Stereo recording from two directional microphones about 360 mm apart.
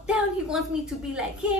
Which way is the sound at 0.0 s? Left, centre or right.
Centre.